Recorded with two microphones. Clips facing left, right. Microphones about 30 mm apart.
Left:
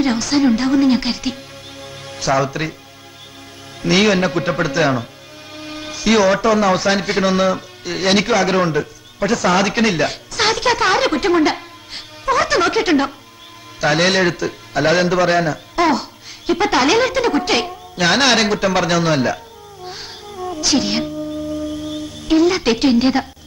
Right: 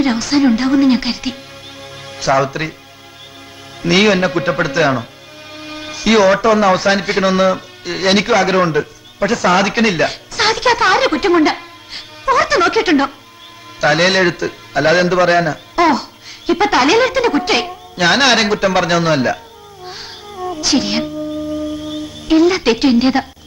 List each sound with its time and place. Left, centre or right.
0.0 s speech: centre
3.8 s a man's voice: centre